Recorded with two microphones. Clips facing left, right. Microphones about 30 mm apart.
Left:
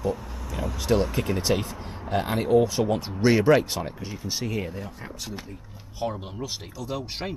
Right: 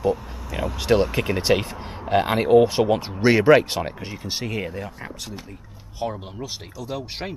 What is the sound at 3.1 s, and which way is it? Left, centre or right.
Speech, right.